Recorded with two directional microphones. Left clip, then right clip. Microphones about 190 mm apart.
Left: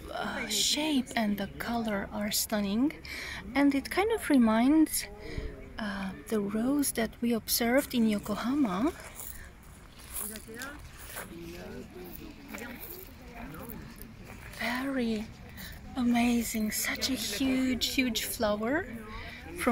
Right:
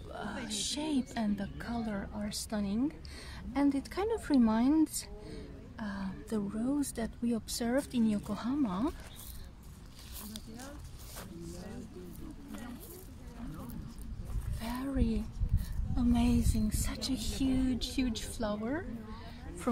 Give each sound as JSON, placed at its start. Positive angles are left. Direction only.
{"t": 0.1, "sound": "a woman's voice", "side_deg": 20}
{"t": 14.6, "sound": "a woman's voice", "side_deg": 10}